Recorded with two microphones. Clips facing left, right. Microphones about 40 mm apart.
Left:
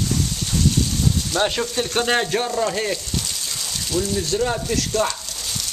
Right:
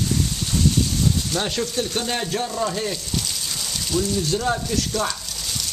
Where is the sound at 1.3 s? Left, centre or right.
Left.